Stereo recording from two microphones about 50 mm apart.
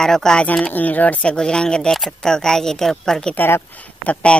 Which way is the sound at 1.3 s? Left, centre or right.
Centre.